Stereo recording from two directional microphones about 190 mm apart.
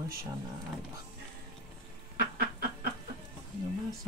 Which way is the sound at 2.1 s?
50° right (ahead or behind).